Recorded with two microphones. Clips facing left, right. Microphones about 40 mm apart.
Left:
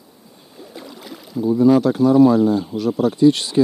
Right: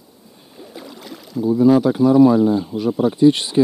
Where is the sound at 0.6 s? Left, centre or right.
Centre.